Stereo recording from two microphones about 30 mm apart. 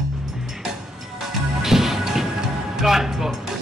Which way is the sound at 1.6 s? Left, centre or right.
Centre.